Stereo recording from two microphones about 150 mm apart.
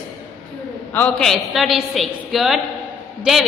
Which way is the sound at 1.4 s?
Centre (ahead or behind).